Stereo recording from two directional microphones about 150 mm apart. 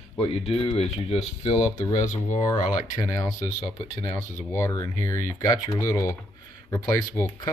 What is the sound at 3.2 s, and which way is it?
Speech, 25° left (ahead or behind).